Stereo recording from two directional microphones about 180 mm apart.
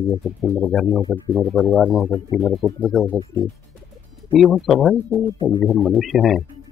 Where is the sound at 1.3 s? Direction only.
Centre (ahead or behind).